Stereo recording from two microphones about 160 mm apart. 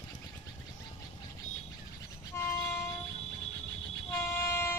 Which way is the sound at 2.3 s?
15° left (ahead or behind).